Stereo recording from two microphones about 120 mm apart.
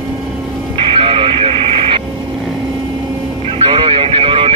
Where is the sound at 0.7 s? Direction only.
50° right (ahead or behind).